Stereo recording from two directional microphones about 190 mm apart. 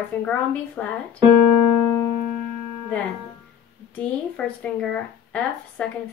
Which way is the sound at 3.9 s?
5° left (ahead or behind).